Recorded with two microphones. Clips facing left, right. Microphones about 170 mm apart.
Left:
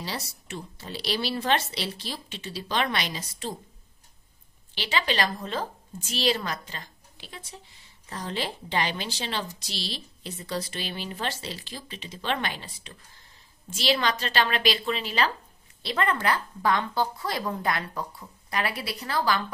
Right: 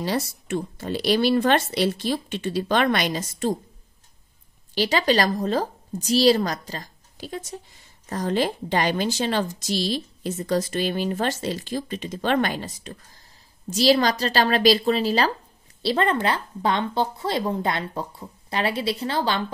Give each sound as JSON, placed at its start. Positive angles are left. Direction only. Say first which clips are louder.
{"t": 0.0, "sound": "a woman's voice", "louder": "right 10 dB", "side_deg": -50}
{"t": 4.7, "sound": "a woman's voice", "louder": "right 7 dB", "side_deg": -40}